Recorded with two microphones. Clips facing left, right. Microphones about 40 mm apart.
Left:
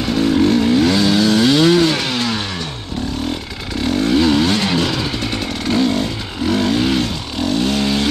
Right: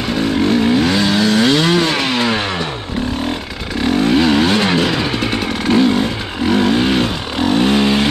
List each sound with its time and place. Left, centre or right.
0.0 s vehicle: centre
3.8 s motorcycle: centre